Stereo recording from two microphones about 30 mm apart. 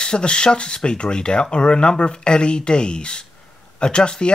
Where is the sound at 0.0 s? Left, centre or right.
Left.